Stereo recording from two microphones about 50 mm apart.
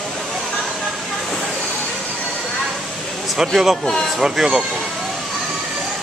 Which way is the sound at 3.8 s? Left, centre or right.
Left.